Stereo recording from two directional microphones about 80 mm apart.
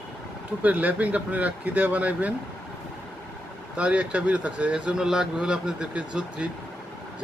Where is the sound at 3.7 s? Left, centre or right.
Centre.